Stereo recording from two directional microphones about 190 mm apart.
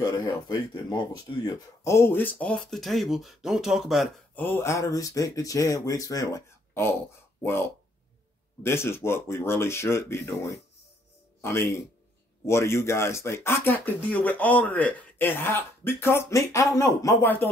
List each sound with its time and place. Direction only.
0.0 s speech: 20° left (ahead or behind); by 4.5 s centre (ahead or behind)
4.5 s speech: 15° left (ahead or behind)